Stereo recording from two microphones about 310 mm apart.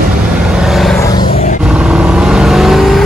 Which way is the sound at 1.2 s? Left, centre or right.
Left.